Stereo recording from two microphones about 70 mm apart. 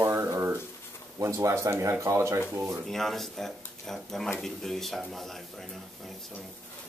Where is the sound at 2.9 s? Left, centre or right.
Centre.